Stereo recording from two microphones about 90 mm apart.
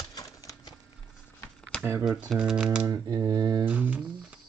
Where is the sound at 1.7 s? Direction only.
10° left (ahead or behind).